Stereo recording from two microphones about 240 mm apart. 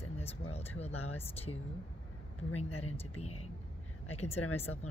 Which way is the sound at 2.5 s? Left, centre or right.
Left.